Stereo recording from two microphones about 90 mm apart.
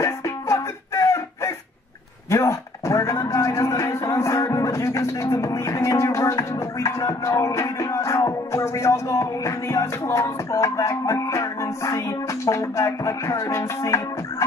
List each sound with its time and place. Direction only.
0.0 s music: 35° left (ahead or behind)
2.2 s a man's voice: 35° left (ahead or behind)